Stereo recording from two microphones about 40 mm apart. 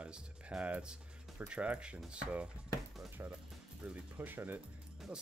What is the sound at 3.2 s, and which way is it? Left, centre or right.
Speech, right.